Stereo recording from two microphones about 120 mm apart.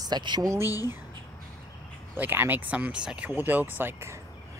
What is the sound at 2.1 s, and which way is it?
Speech, 15° right (ahead or behind).